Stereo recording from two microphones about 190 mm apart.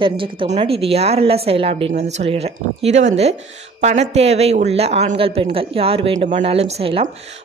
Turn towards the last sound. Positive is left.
turn(degrees=-30)  # may be behind; listen again after turning